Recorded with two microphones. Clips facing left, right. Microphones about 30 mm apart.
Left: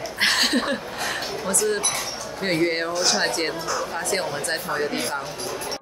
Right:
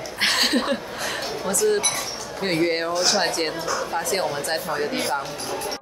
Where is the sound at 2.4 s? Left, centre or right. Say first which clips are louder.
Even; centre.